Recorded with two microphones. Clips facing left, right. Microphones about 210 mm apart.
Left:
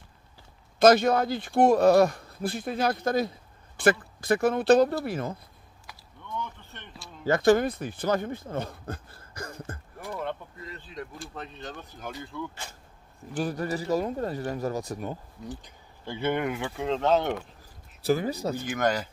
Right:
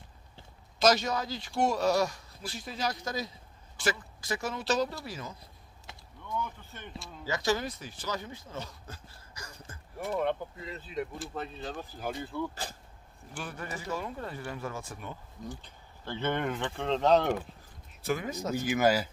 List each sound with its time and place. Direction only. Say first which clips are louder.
0.7 s speech: left 7 dB; 55° left (ahead or behind)
5.9 s mechanisms: even; 25° right (ahead or behind)
6.3 s a sound: even; 5° right (ahead or behind)
7.2 s speech: left 10 dB; 55° left (ahead or behind)
11.0 s speech: right 4 dB; centre (ahead or behind)
13.4 s speech: left 10 dB; 40° left (ahead or behind)
15.6 s speech: left 3 dB; 10° left (ahead or behind)
18.0 s speech: left 6 dB; 35° left (ahead or behind)
18.7 s speech: right 2 dB; 5° right (ahead or behind)